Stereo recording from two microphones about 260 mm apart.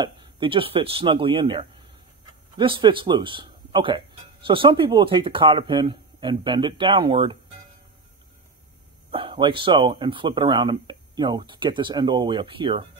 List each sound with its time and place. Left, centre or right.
0.0 s speech: centre
9.1 s speech: centre